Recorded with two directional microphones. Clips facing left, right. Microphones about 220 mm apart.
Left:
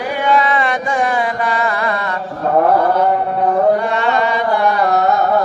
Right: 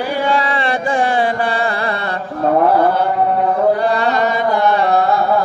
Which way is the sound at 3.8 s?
35° right (ahead or behind).